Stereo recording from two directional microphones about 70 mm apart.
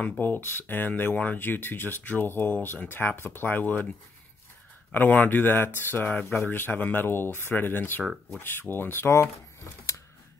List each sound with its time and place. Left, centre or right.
0.2 s speech: left
4.9 s speech: left